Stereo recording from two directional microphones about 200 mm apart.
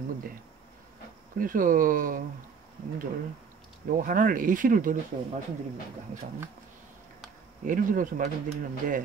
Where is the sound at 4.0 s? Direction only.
45° right (ahead or behind).